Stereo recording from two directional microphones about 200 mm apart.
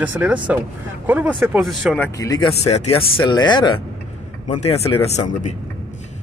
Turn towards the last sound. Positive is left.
turn(degrees=35)  # may be behind; listen again after turning